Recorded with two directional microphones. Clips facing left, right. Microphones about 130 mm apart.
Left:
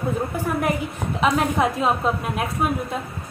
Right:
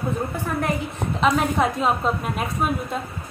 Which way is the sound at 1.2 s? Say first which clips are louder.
Even; centre (ahead or behind).